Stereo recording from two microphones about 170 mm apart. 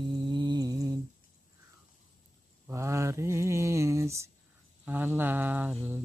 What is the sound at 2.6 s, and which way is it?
Mantra, 15° right (ahead or behind).